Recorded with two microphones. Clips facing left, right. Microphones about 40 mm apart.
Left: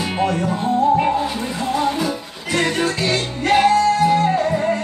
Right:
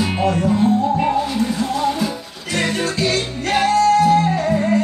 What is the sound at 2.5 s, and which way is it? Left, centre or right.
Music, centre.